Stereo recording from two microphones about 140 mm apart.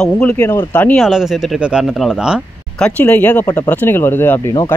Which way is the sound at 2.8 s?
10° left (ahead or behind).